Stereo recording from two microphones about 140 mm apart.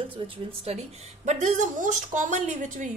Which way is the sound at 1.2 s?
60° right (ahead or behind).